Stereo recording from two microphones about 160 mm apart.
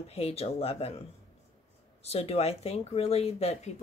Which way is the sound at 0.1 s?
40° left (ahead or behind).